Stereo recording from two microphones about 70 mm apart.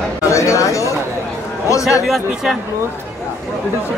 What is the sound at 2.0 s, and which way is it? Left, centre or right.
Speech, centre.